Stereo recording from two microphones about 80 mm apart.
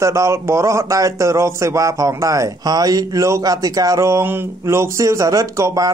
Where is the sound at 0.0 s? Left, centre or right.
Right.